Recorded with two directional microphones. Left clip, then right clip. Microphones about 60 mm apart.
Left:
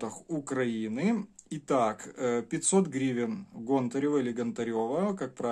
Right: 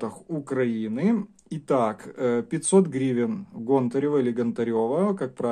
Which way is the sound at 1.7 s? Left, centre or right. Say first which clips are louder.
Right 4 dB; right.